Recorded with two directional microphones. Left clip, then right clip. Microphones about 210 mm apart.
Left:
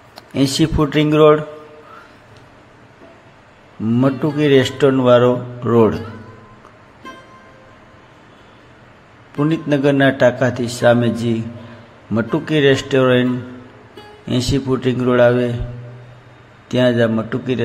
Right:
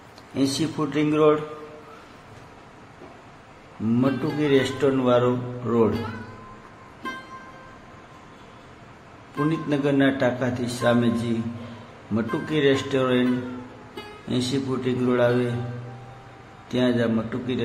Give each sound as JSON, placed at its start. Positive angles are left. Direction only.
{"t": 0.3, "sound": "speech", "side_deg": 30}
{"t": 4.4, "sound": "a man's voice", "side_deg": 25}
{"t": 9.4, "sound": "a man's voice", "side_deg": 25}
{"t": 14.3, "sound": "a man's voice", "side_deg": 25}
{"t": 16.6, "sound": "a man's voice", "side_deg": 25}